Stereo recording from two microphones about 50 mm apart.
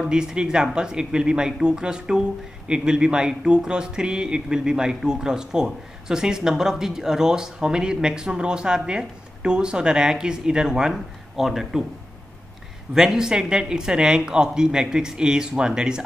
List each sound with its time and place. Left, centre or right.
0.0 s speech: centre
12.9 s speech: centre